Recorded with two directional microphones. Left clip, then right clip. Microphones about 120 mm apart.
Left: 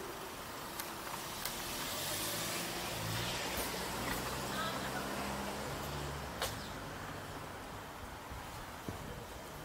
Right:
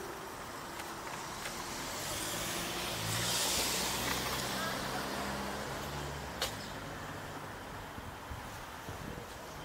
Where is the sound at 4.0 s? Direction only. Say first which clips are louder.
Right 4 dB; 15° right (ahead or behind).